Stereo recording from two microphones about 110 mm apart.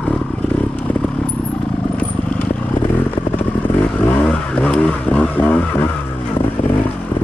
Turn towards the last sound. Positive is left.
turn(degrees=15)  # may be behind; listen again after turning